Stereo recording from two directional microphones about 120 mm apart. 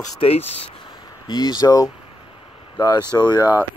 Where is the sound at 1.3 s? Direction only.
35° left (ahead or behind).